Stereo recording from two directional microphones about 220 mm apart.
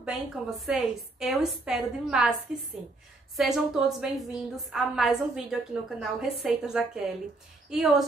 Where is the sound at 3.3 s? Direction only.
Centre (ahead or behind).